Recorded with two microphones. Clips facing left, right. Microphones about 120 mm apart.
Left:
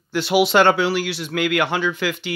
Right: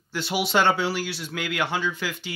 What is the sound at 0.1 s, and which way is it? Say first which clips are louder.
Speech: left 8 dB; 80° left.